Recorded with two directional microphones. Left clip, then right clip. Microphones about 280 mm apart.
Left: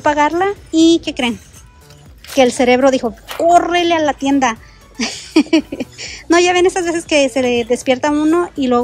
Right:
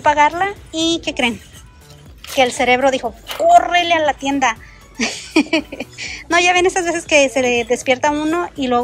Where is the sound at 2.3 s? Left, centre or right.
Centre.